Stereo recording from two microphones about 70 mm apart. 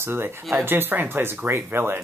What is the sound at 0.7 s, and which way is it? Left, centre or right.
Speech, right.